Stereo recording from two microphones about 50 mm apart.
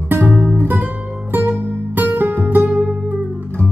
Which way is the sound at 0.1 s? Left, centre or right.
Right.